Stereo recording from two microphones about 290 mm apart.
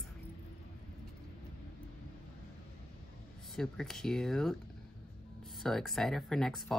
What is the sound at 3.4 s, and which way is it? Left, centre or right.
Speech, centre.